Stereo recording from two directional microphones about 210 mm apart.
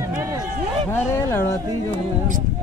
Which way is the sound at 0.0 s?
15° right (ahead or behind).